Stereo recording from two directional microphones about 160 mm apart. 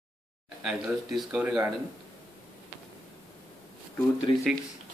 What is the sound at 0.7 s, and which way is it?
Speech, 5° right (ahead or behind).